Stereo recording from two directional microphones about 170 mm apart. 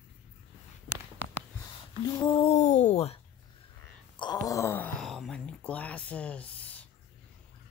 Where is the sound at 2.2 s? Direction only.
30° left (ahead or behind).